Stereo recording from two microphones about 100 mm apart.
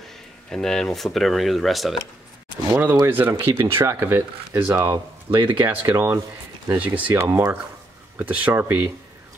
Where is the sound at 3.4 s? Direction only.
30° right (ahead or behind).